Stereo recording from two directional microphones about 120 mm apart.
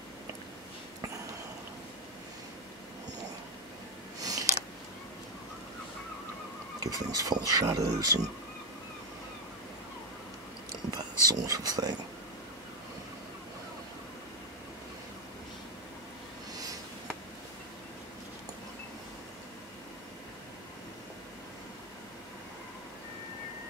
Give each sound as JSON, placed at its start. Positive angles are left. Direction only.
{"t": 4.2, "sound": "a sound", "side_deg": -30}
{"t": 6.8, "sound": "speech", "side_deg": -30}
{"t": 11.2, "sound": "speech", "side_deg": -30}